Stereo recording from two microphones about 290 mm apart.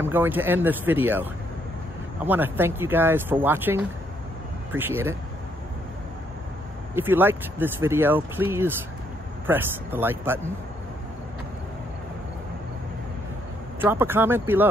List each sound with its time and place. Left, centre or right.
0.0 s speech: centre
7.0 s speech: centre
13.7 s speech: centre